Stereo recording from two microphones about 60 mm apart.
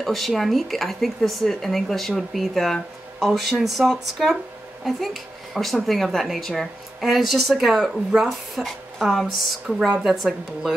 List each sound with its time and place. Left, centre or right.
0.0 s speech: centre